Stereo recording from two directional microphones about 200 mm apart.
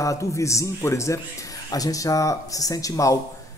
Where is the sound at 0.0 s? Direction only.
15° left (ahead or behind).